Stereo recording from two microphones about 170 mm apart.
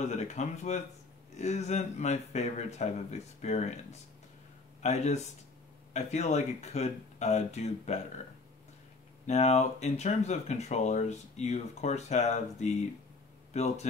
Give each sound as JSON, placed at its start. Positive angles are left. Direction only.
{"t": 0.1, "sound": "speech", "side_deg": 45}
{"t": 4.8, "sound": "speech", "side_deg": 40}
{"t": 9.2, "sound": "speech", "side_deg": 40}